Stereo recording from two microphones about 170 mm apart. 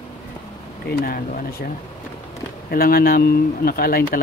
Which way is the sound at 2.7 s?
60° left (ahead or behind).